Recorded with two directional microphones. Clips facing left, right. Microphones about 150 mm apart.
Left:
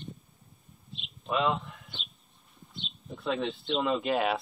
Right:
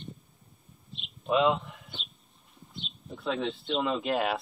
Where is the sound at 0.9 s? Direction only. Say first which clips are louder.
Right 4 dB; centre (ahead or behind).